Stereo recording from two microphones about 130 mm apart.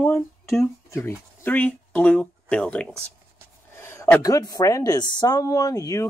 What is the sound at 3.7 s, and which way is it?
Speech, 20° left (ahead or behind).